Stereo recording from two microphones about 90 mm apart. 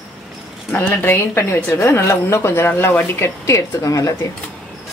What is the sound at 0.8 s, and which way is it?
A woman's voice, 25° left (ahead or behind).